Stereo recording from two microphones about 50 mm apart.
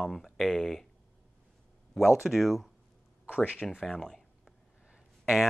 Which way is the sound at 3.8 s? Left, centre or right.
Centre.